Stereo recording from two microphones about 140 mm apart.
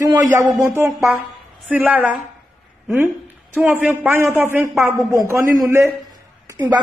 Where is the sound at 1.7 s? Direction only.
10° right (ahead or behind).